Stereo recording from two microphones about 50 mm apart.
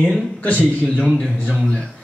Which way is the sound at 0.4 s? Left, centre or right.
Left.